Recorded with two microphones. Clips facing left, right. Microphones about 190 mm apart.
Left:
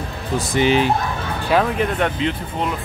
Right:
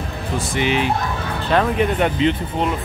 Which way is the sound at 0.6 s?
35° left (ahead or behind).